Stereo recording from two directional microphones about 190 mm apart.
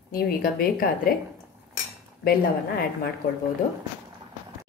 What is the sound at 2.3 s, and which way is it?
Speech, 50° left (ahead or behind).